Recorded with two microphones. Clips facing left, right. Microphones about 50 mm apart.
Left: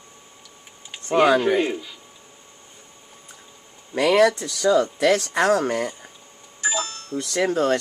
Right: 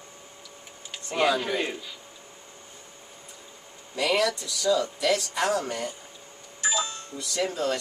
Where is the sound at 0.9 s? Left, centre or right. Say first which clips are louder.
Left 8 dB; centre.